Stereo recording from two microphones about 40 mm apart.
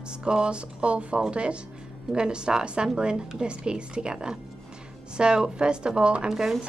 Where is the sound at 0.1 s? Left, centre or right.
Right.